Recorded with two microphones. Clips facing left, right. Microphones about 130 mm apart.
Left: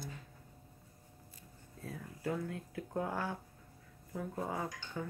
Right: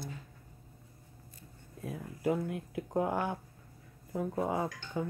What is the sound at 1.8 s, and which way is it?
Speech, 15° right (ahead or behind).